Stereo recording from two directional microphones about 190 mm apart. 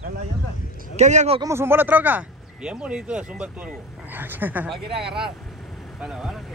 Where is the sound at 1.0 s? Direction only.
35° right (ahead or behind).